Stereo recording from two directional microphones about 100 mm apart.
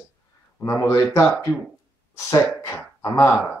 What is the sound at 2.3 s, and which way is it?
Speech, 30° left (ahead or behind).